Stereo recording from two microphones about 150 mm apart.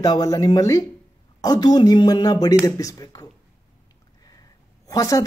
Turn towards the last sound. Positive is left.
turn(degrees=20)  # may be behind; listen again after turning